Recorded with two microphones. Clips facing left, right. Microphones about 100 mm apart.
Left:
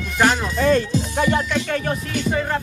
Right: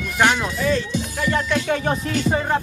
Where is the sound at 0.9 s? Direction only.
25° left (ahead or behind).